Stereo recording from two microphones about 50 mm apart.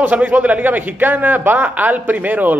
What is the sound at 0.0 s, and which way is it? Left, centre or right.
Speech, right.